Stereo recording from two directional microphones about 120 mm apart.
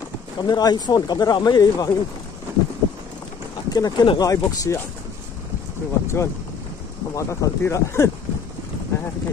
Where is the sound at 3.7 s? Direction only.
35° left (ahead or behind).